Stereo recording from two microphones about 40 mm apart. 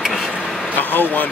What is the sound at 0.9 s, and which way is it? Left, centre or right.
Speech, left.